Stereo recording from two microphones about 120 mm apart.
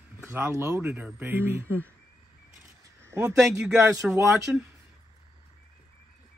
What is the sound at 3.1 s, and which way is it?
Speech, 25° right (ahead or behind).